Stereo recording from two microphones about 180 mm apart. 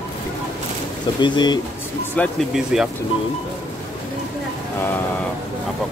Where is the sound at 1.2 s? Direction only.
25° left (ahead or behind).